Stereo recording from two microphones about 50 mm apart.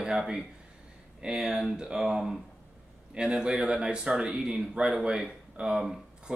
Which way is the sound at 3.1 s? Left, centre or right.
Centre.